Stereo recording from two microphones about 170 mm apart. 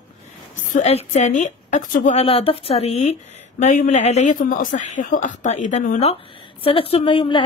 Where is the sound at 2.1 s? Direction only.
35° left (ahead or behind).